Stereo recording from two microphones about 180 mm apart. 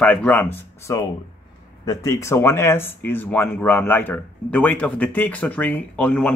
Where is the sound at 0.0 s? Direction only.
5° left (ahead or behind).